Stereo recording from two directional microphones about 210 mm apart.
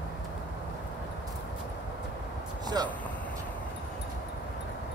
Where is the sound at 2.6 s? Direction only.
20° right (ahead or behind).